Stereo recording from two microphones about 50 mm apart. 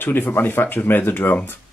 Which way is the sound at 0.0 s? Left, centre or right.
Left.